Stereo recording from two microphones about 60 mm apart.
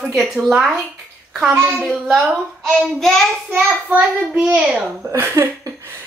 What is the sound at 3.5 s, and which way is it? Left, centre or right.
Speech, right.